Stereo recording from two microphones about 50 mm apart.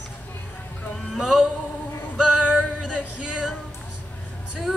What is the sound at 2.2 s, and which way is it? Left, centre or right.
Male singing, centre.